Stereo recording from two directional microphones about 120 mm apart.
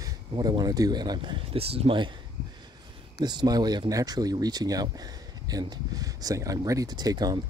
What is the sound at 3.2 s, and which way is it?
Speech, 35° right (ahead or behind).